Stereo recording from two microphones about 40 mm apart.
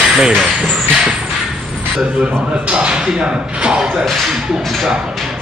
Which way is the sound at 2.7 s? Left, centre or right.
Right.